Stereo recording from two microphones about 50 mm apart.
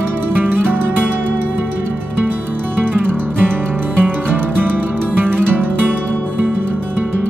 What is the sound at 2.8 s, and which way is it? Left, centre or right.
Music, right.